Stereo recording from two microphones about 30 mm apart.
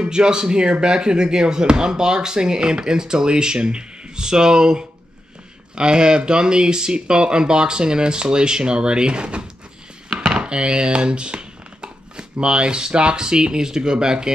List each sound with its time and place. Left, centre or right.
0.0 s speech: right